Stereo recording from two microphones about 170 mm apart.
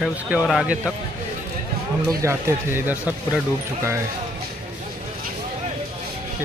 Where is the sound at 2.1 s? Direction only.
15° right (ahead or behind).